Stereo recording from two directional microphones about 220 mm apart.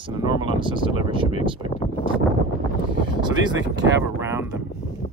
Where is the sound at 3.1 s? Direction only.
20° right (ahead or behind).